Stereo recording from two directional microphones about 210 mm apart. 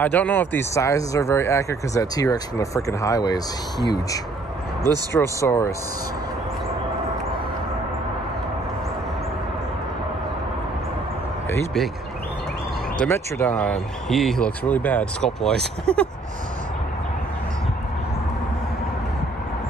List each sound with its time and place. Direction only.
0.0 s speech: 10° left (ahead or behind)
13.0 s speech: 10° left (ahead or behind)